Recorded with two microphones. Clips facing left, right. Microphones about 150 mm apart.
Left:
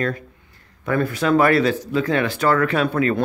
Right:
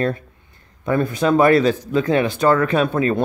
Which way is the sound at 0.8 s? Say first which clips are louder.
Right 2 dB; 20° right (ahead or behind).